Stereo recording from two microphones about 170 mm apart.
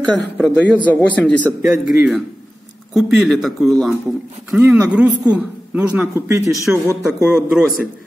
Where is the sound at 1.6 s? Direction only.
5° right (ahead or behind).